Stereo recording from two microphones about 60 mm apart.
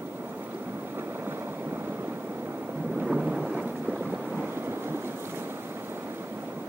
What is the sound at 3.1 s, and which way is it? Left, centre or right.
Thunder, centre.